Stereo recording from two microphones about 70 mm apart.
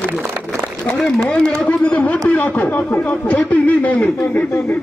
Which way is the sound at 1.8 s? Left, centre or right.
Left.